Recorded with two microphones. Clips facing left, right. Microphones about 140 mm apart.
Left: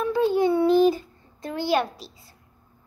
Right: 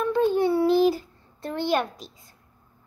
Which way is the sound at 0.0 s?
5° left (ahead or behind).